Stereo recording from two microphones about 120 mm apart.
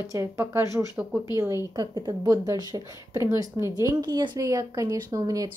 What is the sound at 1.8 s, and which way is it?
A woman's voice, 35° right (ahead or behind).